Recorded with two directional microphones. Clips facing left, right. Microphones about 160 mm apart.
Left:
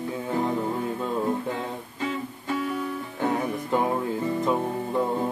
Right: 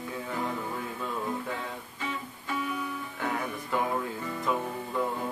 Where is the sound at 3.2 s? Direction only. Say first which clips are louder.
Left 7 dB; 30° left (ahead or behind).